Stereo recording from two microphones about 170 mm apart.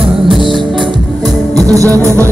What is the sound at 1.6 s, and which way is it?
Music, 20° right (ahead or behind).